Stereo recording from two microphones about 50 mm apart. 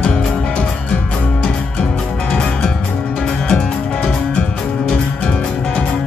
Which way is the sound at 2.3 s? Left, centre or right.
Centre.